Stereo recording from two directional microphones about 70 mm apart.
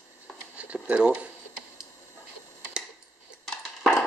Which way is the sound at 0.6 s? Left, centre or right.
Centre.